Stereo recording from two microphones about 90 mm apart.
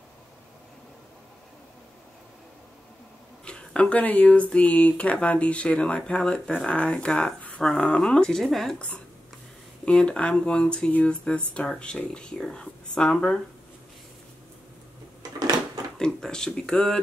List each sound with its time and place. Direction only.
3.4 s speech: 10° left (ahead or behind)
15.3 s a sound: 45° right (ahead or behind)
16.0 s speech: 10° left (ahead or behind)